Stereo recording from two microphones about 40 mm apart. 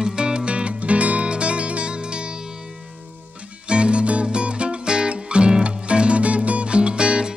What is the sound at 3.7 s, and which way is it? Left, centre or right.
Music, right.